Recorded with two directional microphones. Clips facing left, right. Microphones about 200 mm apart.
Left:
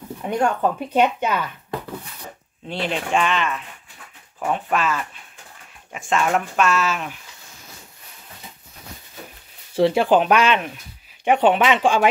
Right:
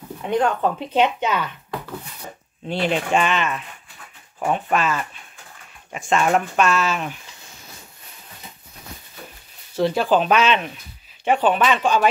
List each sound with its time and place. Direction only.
0.4 s speech: 10° left (ahead or behind)
2.7 s speech: 5° right (ahead or behind)
9.8 s speech: 25° left (ahead or behind); by 10.7 s 10° left (ahead or behind)
11.2 s speech: 20° left (ahead or behind)